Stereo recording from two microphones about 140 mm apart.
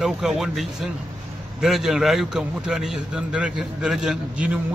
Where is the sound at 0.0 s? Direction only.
5° right (ahead or behind).